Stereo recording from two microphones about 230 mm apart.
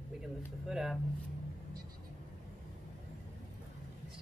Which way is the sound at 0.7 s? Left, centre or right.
Centre.